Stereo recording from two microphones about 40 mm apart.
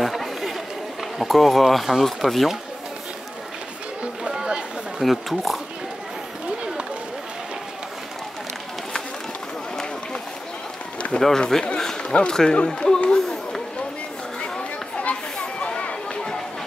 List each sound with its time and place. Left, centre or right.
0.0 s chatter: centre
1.1 s speech: centre
4.2 s a sound: centre
5.0 s speech: centre
11.1 s speech: centre
12.0 s run: left
12.3 s speech: centre
13.1 s a sound: centre
15.0 s children playing: left